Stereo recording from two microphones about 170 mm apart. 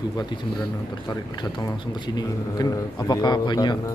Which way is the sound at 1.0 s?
25° left (ahead or behind).